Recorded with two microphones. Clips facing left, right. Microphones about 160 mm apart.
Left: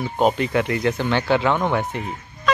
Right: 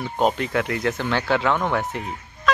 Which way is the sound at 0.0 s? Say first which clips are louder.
Left 2 dB; 5° left (ahead or behind).